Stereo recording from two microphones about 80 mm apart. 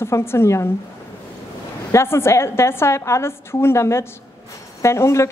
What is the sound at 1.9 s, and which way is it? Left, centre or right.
A woman's voice, left.